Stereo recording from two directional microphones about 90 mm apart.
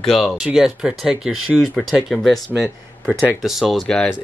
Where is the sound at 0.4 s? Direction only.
5° right (ahead or behind).